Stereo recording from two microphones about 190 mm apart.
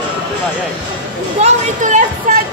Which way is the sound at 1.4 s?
40° right (ahead or behind).